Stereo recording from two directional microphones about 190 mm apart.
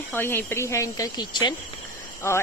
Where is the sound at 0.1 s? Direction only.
10° left (ahead or behind).